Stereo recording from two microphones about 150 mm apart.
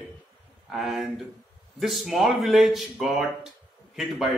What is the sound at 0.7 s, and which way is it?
Speech, centre (ahead or behind).